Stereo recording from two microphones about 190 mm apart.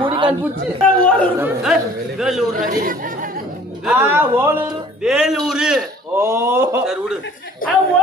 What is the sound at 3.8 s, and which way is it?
Speech, 10° right (ahead or behind).